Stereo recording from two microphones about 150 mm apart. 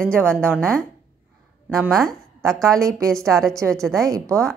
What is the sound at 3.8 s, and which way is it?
Speech, 5° left (ahead or behind).